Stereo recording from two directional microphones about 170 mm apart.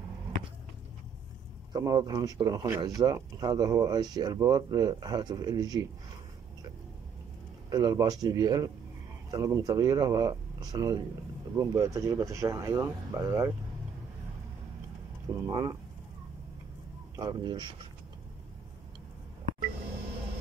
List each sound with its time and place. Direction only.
1.7 s speech: 25° right (ahead or behind)
7.7 s speech: 20° right (ahead or behind)
15.4 s speech: 20° right (ahead or behind)
17.2 s speech: 25° right (ahead or behind)